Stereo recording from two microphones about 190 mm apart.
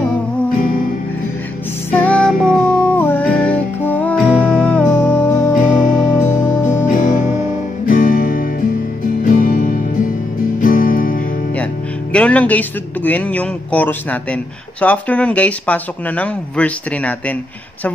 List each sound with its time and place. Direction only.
1.9 s music: 10° left (ahead or behind)
6.9 s music: 45° left (ahead or behind)
12.1 s a man's voice: 5° left (ahead or behind)